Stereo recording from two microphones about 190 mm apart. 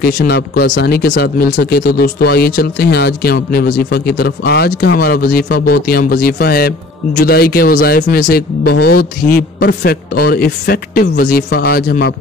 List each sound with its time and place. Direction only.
0.0 s speech: 55° left (ahead or behind)